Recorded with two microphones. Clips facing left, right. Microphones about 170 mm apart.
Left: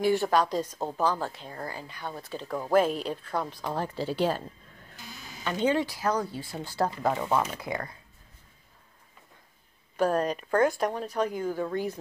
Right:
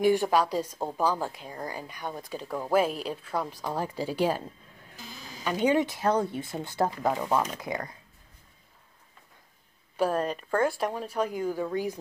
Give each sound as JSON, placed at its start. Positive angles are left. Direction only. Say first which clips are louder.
{"t": 0.0, "sound": "a woman's voice", "louder": "right 1 dB", "side_deg": -15}
{"t": 5.4, "sound": "speech", "louder": "right 2 dB", "side_deg": -10}
{"t": 7.0, "sound": "a woman's voice", "louder": "even", "side_deg": -10}
{"t": 9.9, "sound": "a woman's voice", "louder": "left 1 dB", "side_deg": -5}